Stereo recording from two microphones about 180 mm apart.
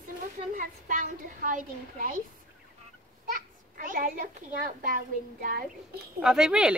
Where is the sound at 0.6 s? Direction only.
50° right (ahead or behind).